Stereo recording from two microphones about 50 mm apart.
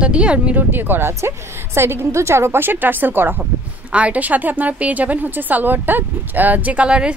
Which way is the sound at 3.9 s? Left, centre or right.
Right.